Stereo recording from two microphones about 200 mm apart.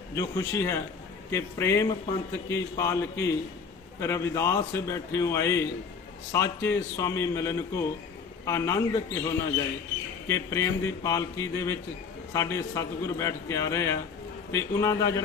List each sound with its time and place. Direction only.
0.1 s a man's voice: 15° left (ahead or behind)